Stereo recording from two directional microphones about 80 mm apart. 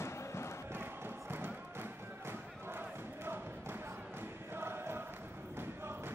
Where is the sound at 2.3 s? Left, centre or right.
Right.